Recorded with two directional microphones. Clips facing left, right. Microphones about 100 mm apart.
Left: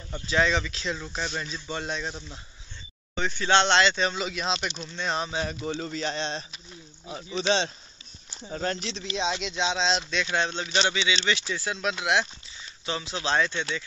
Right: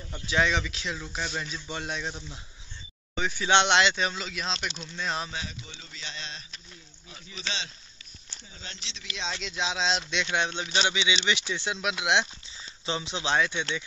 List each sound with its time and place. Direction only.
0.3 s speech: 10° right (ahead or behind)
0.9 s speech: centre (ahead or behind)
4.1 s speech: 5° left (ahead or behind)
5.7 s a sound: 50° left (ahead or behind); by 6.4 s 35° left (ahead or behind)
7.1 s speech: 30° left (ahead or behind)
8.5 s a sound: 50° left (ahead or behind)
9.0 s speech: 20° left (ahead or behind)
9.4 s speech: centre (ahead or behind)
12.1 s speech: 25° right (ahead or behind)